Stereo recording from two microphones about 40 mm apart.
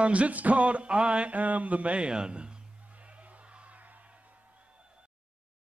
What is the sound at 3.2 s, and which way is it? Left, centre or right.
Music, right.